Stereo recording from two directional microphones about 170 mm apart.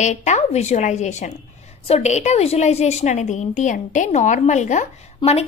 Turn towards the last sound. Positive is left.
turn(degrees=40)  # may be behind; listen again after turning